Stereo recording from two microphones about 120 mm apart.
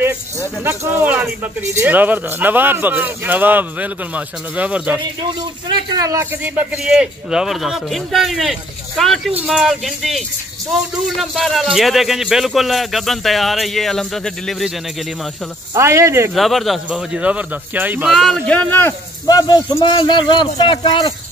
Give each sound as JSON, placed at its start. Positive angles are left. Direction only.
{"t": 0.7, "sound": "speech", "side_deg": -15}
{"t": 5.4, "sound": "speech", "side_deg": -35}
{"t": 6.3, "sound": "a man's voice", "side_deg": -15}
{"t": 15.7, "sound": "speech", "side_deg": -25}
{"t": 16.3, "sound": "speech", "side_deg": 0}
{"t": 18.1, "sound": "speech", "side_deg": 0}
{"t": 19.2, "sound": "speech", "side_deg": 35}